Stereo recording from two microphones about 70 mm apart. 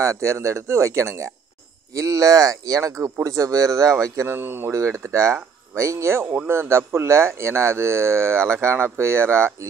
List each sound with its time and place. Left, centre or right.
0.0 s speech: right
4.3 s speech: right
4.7 s speech: right
6.3 s speech: right